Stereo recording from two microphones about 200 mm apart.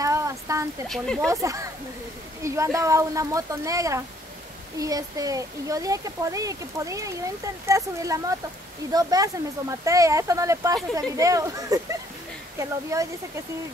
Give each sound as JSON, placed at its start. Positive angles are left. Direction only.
{"t": 0.0, "sound": "a sound", "side_deg": -15}
{"t": 0.8, "sound": "speech", "side_deg": 0}
{"t": 1.2, "sound": "speech", "side_deg": -15}